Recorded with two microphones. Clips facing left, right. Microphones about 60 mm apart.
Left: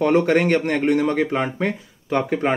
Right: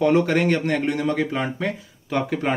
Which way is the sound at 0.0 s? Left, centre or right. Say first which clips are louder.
Left 1 dB; left.